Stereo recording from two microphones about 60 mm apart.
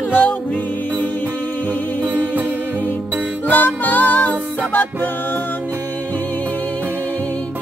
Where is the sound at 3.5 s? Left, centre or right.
Left.